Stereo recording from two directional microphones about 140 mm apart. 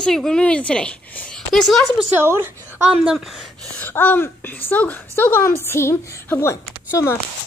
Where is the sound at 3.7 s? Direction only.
15° left (ahead or behind).